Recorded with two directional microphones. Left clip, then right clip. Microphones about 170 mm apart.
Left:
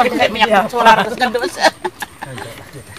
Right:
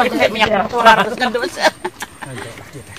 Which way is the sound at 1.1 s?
60° left (ahead or behind).